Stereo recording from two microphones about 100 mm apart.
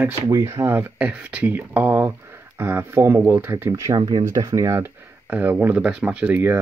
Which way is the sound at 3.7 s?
35° right (ahead or behind).